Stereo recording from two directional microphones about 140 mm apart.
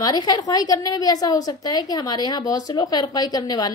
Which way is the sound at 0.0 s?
25° left (ahead or behind).